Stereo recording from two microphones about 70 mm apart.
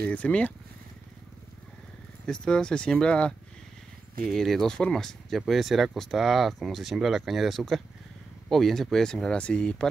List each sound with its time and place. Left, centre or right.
0.0 s speech: centre
2.2 s speech: centre
4.3 s speech: centre